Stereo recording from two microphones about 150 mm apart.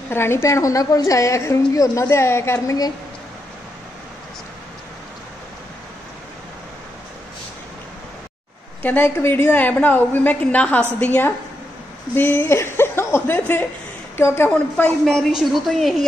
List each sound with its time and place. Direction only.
0.1 s a woman's voice: 15° left (ahead or behind)
8.8 s a woman's voice: 15° left (ahead or behind)
15.0 s a woman's voice: centre (ahead or behind)